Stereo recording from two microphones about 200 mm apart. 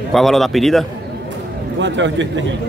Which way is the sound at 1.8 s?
65° right (ahead or behind).